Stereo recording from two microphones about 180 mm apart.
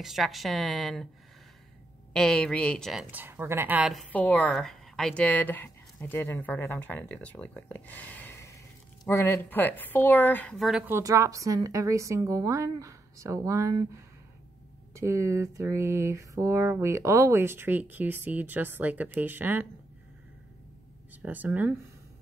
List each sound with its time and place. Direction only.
0.0 s speech: centre (ahead or behind)
2.1 s speech: 5° left (ahead or behind)
4.1 s speech: 10° left (ahead or behind)
10.9 s a sound: 15° right (ahead or behind)
21.1 s speech: 10° right (ahead or behind)